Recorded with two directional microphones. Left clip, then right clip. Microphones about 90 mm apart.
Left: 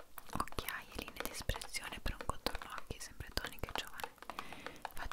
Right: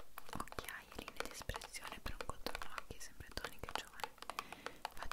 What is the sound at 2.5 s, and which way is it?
Whispering, 35° right (ahead or behind).